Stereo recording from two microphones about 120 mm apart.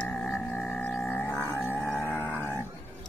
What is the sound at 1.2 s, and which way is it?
Music, 20° left (ahead or behind).